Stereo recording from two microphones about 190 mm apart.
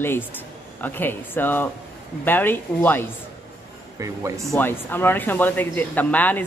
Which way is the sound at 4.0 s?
15° right (ahead or behind).